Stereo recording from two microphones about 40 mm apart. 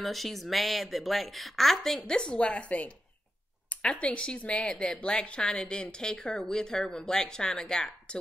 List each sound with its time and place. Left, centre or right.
0.0 s speech: centre
2.1 s a woman's voice: left
4.0 s a woman's voice: left